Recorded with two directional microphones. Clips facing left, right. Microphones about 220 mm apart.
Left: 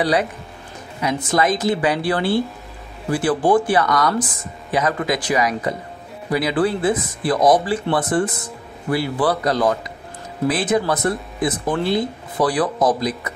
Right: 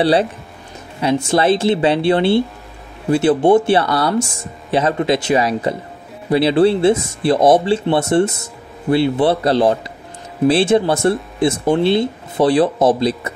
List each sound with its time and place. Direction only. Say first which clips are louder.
0.0 s speech: right 5 dB; 30° right (ahead or behind)